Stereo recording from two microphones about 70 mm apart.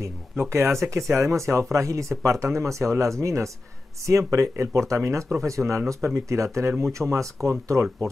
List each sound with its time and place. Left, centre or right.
0.5 s speech: right